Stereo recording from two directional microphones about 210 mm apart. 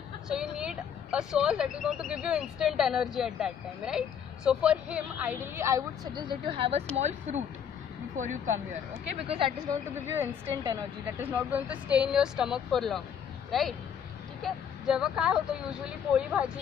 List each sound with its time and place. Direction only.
0.3 s a woman's voice: 5° right (ahead or behind)
6.2 s speech: 25° right (ahead or behind)
10.0 s a woman's voice: 10° right (ahead or behind)
11.2 s speech: 5° right (ahead or behind)